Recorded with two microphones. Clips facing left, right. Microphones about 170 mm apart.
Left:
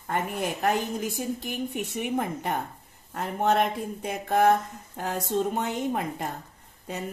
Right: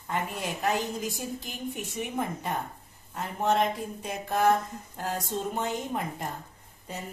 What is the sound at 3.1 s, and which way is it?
Speech, 60° left (ahead or behind).